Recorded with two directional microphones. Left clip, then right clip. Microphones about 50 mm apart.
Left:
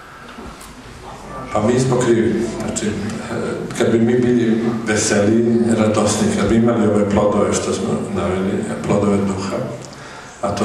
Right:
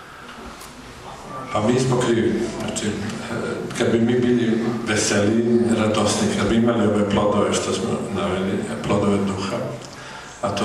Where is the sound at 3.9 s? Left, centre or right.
Centre.